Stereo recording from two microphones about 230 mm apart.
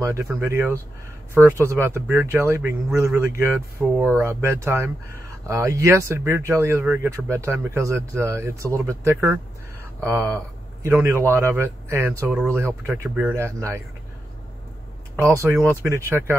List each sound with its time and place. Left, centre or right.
0.0 s speech: centre
15.1 s speech: centre